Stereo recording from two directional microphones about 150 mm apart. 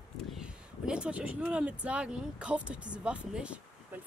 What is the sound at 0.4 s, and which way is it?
Speech, 5° right (ahead or behind).